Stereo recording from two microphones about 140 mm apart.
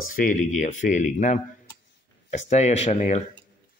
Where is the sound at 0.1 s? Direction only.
70° left (ahead or behind).